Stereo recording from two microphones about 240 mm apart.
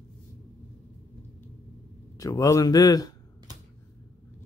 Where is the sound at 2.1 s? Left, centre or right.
Centre.